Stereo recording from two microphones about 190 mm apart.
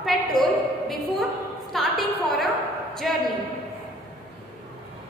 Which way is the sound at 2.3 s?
Centre (ahead or behind).